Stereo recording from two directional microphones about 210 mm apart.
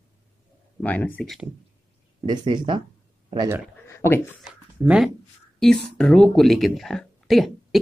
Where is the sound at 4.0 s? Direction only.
10° left (ahead or behind).